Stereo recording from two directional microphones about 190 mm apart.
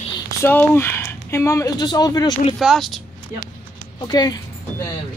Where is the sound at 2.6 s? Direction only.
Centre (ahead or behind).